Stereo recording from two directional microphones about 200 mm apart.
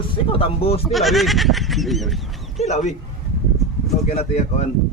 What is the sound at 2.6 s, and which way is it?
Speech, 35° left (ahead or behind).